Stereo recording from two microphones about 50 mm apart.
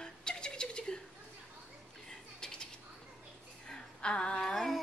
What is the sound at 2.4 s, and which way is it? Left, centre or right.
Bird, centre.